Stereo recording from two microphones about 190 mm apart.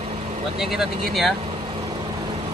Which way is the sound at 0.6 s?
Centre (ahead or behind).